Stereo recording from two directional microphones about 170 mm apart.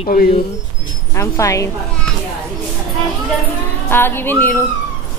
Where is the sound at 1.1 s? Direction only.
15° left (ahead or behind).